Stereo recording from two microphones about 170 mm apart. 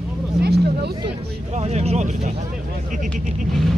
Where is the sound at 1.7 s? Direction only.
40° right (ahead or behind).